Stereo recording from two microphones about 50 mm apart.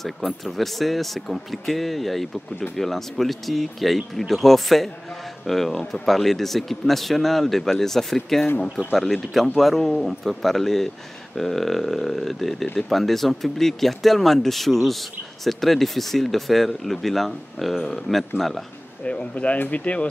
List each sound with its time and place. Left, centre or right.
0.0 s speech: centre
19.0 s speech: left